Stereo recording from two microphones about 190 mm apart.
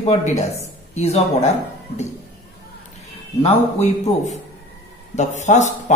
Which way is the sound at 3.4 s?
35° left (ahead or behind).